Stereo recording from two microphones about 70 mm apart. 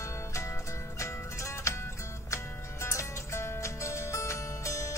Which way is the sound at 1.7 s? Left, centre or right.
Left.